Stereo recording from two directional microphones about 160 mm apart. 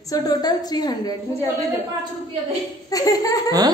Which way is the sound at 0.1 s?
25° left (ahead or behind).